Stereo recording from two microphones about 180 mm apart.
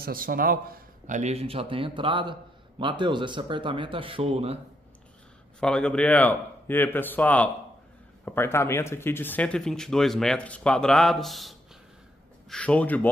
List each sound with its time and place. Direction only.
0.0 s speech: 55° right (ahead or behind); by 4.6 s 35° right (ahead or behind)
5.6 s speech: 5° left (ahead or behind)